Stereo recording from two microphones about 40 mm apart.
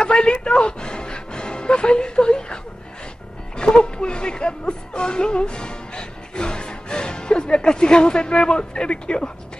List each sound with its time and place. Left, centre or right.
0.0 s music: left
3.5 s speech: left